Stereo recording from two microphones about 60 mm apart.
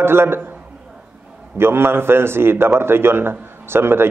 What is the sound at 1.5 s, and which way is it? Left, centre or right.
A man's voice, right.